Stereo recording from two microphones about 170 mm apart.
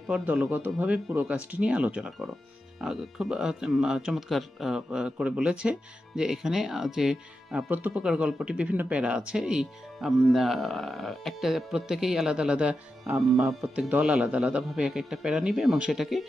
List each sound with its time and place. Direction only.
0.0 s speech: 5° right (ahead or behind)